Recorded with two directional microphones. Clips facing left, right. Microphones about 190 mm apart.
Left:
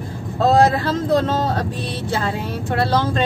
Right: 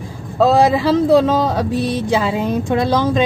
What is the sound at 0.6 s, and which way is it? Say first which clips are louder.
Speech: right 3 dB; 10° right (ahead or behind).